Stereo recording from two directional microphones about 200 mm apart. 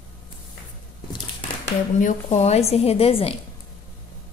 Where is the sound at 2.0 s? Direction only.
35° left (ahead or behind).